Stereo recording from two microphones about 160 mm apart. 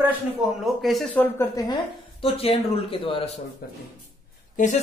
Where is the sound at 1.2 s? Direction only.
20° left (ahead or behind).